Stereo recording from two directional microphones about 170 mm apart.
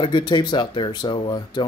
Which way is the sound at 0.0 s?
25° left (ahead or behind).